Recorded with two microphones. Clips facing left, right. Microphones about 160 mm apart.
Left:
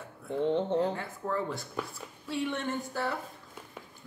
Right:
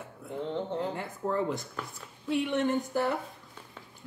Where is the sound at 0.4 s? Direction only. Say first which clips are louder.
Left 5 dB; 20° left (ahead or behind).